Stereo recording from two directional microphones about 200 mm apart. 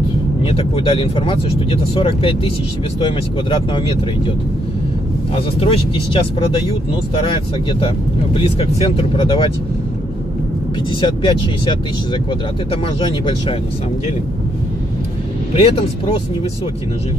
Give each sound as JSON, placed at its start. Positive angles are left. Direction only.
{"t": 0.4, "sound": "speech", "side_deg": 25}
{"t": 5.6, "sound": "speech", "side_deg": 25}
{"t": 7.8, "sound": "speech", "side_deg": 25}
{"t": 10.9, "sound": "speech", "side_deg": 25}
{"t": 15.5, "sound": "speech", "side_deg": 30}